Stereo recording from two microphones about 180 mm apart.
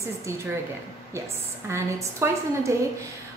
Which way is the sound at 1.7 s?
15° right (ahead or behind).